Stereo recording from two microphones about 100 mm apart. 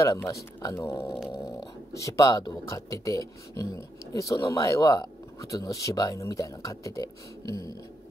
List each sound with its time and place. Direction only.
0.0 s speech: 35° left (ahead or behind)
0.9 s dog: 10° right (ahead or behind)
2.0 s speech: 35° left (ahead or behind)